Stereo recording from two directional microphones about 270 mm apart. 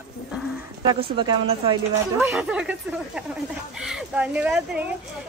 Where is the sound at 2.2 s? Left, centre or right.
Centre.